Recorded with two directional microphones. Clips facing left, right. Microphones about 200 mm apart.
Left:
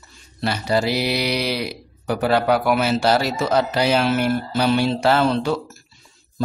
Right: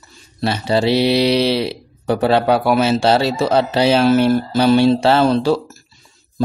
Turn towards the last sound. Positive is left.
turn(degrees=-30)  # may be behind; listen again after turning